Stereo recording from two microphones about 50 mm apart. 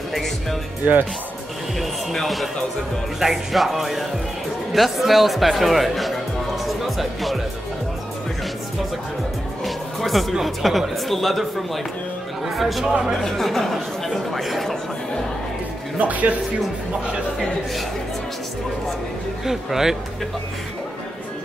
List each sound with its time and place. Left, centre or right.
0.1 s speech: centre
0.8 s speech: right
1.8 s speech: centre
6.6 s music: centre
9.7 s music: centre
10.4 s speech: centre
16.0 s speech: right
19.4 s speech: centre